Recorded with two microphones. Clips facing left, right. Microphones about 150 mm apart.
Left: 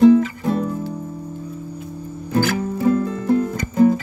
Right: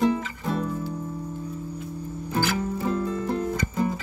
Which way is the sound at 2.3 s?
50° left (ahead or behind).